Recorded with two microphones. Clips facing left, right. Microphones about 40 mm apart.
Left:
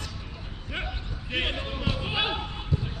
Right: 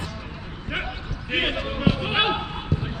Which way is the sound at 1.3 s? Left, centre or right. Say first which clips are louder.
Right 5 dB; right.